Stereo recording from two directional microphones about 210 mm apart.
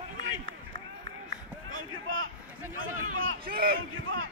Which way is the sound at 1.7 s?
70° right (ahead or behind).